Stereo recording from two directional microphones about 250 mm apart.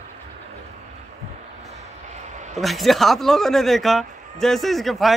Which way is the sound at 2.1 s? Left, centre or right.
Right.